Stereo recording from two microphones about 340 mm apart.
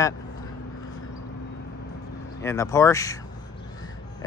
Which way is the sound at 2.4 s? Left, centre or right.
Centre.